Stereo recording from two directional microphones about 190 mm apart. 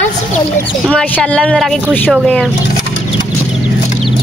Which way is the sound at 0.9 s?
5° left (ahead or behind).